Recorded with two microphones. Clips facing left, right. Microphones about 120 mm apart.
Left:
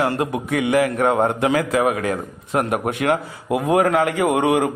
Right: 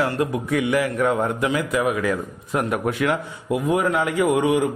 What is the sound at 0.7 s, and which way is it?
Speech, 65° left (ahead or behind).